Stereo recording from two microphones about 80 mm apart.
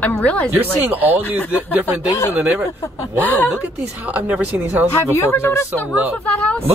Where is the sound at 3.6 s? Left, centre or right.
Centre.